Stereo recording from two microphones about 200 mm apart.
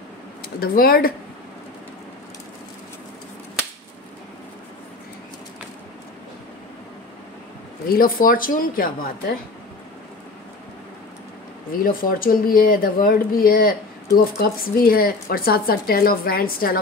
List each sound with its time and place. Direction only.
0.6 s speech: 50° left (ahead or behind)
7.9 s speech: 45° left (ahead or behind)
11.7 s speech: 45° left (ahead or behind)